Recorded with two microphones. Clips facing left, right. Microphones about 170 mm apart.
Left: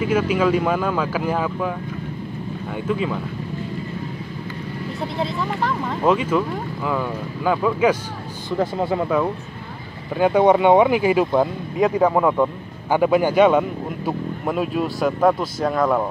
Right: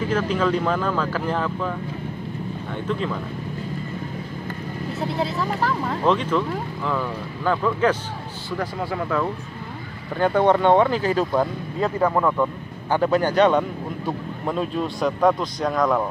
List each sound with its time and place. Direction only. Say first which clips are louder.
0.0 s speech: left 3 dB; 10° left (ahead or behind)
2.9 s speech: left 3 dB; 10° left (ahead or behind)
5.0 s speech: even; centre (ahead or behind)
8.5 s speech: left 6 dB; 25° left (ahead or behind)
10.1 s speech: left 3 dB; 10° left (ahead or behind)